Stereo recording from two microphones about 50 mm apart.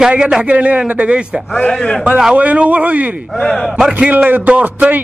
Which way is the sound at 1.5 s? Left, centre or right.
Centre.